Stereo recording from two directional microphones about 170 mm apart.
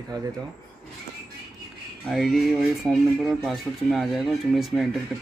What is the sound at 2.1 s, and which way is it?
Speech, centre (ahead or behind).